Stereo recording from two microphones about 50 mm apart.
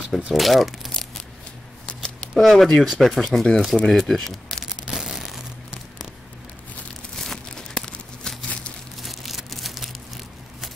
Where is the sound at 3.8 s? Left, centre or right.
Centre.